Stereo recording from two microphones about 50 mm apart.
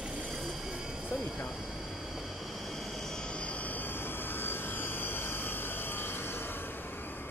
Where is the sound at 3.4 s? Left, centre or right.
Left.